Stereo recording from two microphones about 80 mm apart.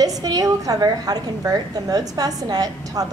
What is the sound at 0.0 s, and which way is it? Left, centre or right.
A woman's voice, right.